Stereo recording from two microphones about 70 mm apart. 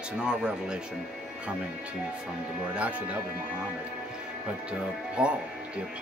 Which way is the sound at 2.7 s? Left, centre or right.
Right.